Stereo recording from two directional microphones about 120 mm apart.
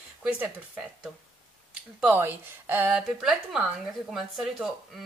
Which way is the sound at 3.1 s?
5° right (ahead or behind).